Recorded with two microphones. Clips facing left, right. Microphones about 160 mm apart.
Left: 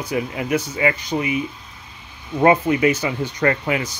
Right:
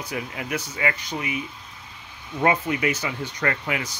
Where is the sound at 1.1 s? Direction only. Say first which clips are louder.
Left 8 dB; 35° left (ahead or behind).